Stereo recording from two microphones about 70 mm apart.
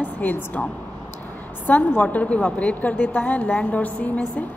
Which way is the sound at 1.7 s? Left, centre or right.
Left.